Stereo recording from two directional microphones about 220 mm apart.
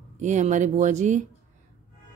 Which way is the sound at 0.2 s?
35° right (ahead or behind).